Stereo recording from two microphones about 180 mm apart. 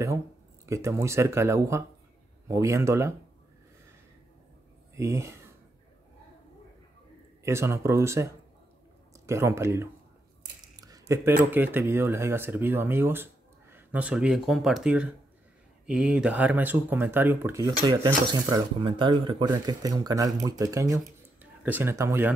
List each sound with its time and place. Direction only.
0.7 s speech: 15° right (ahead or behind)
4.9 s speech: 15° right (ahead or behind)
7.4 s speech: 15° right (ahead or behind)
10.8 s a sound: 20° right (ahead or behind)
11.5 s speech: 10° right (ahead or behind)